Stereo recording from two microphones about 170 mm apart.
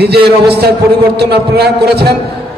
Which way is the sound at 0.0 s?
70° right (ahead or behind).